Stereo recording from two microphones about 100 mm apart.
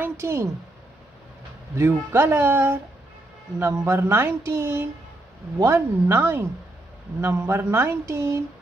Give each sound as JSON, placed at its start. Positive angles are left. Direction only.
{"t": 0.0, "sound": "a woman's voice", "side_deg": -25}
{"t": 1.8, "sound": "speech", "side_deg": -25}